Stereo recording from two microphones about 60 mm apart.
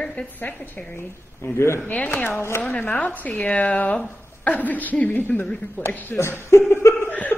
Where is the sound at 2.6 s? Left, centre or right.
Left.